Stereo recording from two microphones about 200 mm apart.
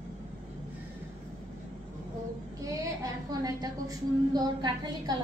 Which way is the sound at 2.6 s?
20° right (ahead or behind).